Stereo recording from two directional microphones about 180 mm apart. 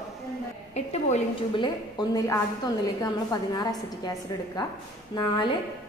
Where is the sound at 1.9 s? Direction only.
20° left (ahead or behind).